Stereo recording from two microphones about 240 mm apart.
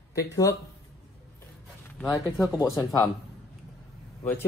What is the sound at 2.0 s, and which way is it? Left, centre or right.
Speech, centre.